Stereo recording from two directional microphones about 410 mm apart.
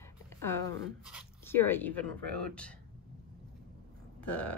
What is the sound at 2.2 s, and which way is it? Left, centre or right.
Speech, right.